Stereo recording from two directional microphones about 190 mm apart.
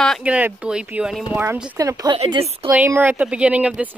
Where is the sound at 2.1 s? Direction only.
30° right (ahead or behind).